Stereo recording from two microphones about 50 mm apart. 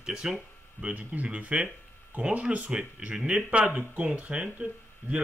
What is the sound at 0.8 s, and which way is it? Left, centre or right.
Speech, right.